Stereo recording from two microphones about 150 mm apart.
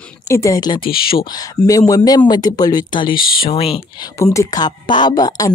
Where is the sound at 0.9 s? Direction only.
90° left.